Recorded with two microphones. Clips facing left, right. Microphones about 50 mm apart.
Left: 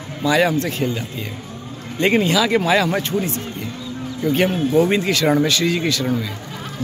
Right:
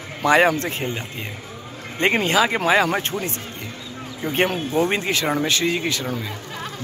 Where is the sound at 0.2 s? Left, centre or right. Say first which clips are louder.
Right 1 dB; right.